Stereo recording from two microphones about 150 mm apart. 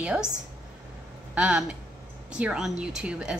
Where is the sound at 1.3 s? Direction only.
5° right (ahead or behind).